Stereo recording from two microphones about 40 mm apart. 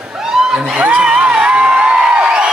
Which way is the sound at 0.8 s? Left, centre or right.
Right.